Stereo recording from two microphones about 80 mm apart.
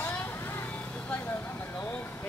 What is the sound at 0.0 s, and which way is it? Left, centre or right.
Vehicle, left.